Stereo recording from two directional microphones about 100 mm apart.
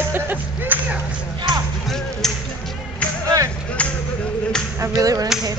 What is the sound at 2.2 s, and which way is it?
Music, 5° left (ahead or behind).